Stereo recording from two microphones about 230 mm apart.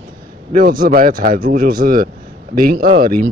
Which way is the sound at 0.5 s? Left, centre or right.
Right.